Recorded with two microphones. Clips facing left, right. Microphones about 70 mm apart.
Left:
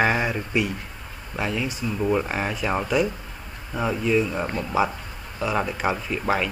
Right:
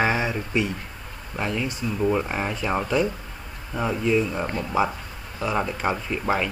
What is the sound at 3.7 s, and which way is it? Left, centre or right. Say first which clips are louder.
Speech: even; centre.